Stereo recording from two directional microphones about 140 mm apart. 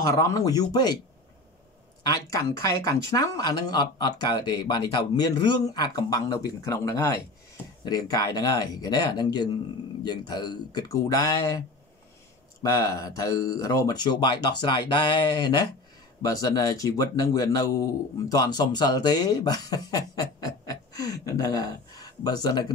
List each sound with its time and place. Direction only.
0.0 s speech: 25° left (ahead or behind)
2.0 s speech: 25° left (ahead or behind)
12.6 s speech: 25° left (ahead or behind)